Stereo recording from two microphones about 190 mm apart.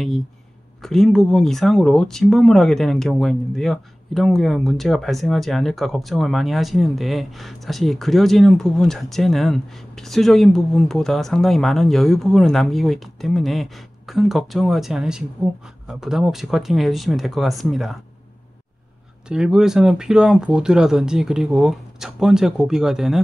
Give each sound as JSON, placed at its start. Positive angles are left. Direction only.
{"t": 0.8, "sound": "speech", "side_deg": 0}
{"t": 19.2, "sound": "speech", "side_deg": -5}